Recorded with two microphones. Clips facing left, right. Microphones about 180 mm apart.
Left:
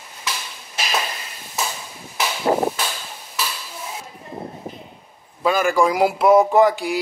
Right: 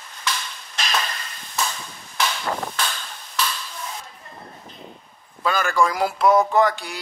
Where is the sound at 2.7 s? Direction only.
10° left (ahead or behind).